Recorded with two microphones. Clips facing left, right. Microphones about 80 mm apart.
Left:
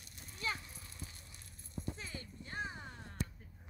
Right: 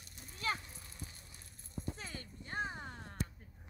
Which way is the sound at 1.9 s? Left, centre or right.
Right.